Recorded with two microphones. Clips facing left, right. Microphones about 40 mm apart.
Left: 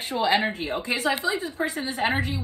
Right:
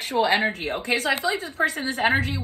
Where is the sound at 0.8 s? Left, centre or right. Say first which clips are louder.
Right 2 dB; right.